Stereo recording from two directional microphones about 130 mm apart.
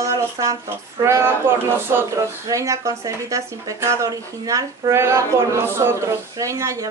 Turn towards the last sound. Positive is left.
turn(degrees=-25)  # may be behind; listen again after turning